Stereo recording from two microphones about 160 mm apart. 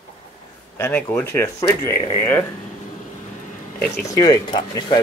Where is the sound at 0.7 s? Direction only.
15° left (ahead or behind).